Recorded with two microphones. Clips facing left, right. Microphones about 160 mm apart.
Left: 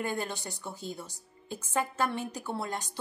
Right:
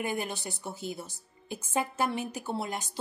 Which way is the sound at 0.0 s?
10° right (ahead or behind).